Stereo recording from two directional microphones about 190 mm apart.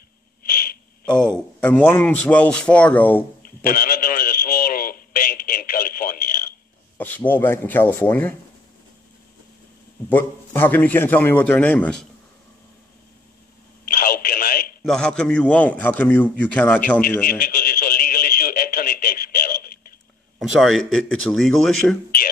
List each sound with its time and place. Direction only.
1.0 s a man's voice: 5° left (ahead or behind)
3.4 s radio: 50° left (ahead or behind)
7.0 s a man's voice: 10° left (ahead or behind)
10.0 s a man's voice: 10° left (ahead or behind)
13.8 s telephone: 45° left (ahead or behind)
14.8 s a man's voice: 5° left (ahead or behind)
17.2 s radio: 50° left (ahead or behind)
20.3 s a man's voice: centre (ahead or behind)